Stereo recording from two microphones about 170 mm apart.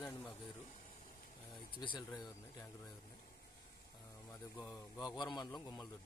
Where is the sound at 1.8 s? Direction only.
25° left (ahead or behind).